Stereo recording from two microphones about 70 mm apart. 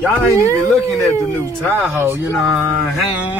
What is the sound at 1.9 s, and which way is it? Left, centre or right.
Speech, right.